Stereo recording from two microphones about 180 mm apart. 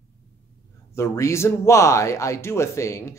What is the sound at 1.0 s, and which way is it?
Speech, 15° left (ahead or behind).